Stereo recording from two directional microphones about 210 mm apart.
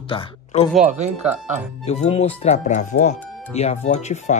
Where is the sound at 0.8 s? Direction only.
35° right (ahead or behind).